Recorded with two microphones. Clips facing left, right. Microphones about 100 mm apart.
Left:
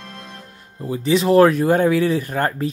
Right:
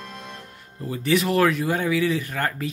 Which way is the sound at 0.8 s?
25° left (ahead or behind).